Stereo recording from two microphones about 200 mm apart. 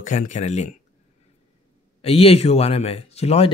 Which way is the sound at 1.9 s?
30° left (ahead or behind).